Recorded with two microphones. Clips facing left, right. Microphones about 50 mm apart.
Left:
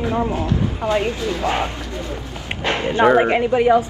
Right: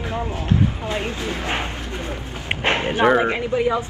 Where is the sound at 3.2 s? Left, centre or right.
Left.